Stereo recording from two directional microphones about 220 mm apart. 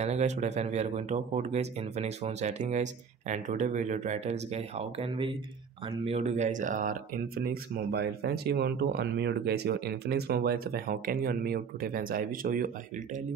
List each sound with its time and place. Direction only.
0.0 s speech: 30° right (ahead or behind)